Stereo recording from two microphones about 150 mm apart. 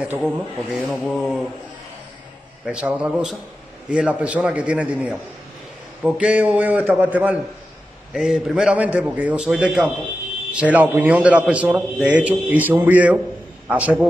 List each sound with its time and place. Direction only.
0.0 s speech: 5° right (ahead or behind)
2.6 s a man's voice: 5° right (ahead or behind)